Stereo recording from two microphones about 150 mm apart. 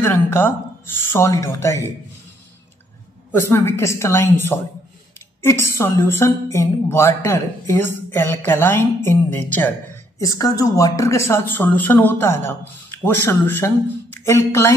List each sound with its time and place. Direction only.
0.0 s speech: 15° left (ahead or behind)
3.3 s speech: 15° left (ahead or behind)
10.2 s speech: 25° left (ahead or behind)